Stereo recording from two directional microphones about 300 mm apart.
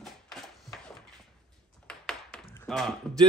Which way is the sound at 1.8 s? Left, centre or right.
Centre.